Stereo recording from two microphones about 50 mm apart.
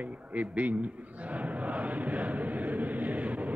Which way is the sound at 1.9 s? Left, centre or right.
Right.